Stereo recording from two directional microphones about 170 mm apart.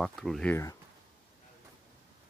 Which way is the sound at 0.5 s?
20° left (ahead or behind).